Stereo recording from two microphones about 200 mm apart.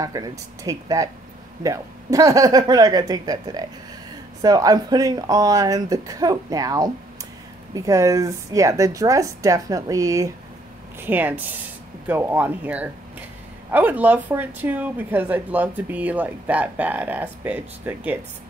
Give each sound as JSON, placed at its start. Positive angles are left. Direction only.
{"t": 0.0, "sound": "a woman's voice", "side_deg": -15}